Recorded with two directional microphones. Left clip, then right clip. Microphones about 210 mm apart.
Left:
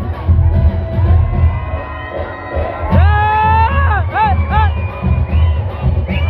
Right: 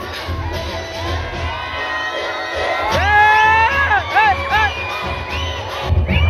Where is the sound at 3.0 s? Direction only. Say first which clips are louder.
Right 2 dB; 15° left (ahead or behind).